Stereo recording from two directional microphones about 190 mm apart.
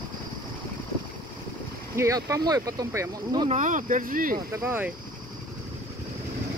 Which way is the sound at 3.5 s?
40° right (ahead or behind).